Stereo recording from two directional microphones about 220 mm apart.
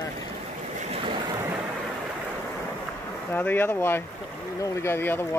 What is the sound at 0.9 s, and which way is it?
Boat, 20° right (ahead or behind).